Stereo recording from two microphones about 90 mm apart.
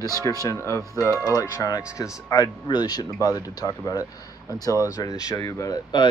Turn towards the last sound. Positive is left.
turn(degrees=50)  # may be behind; listen again after turning